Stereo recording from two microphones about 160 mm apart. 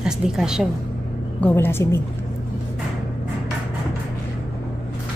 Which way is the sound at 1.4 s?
15° left (ahead or behind).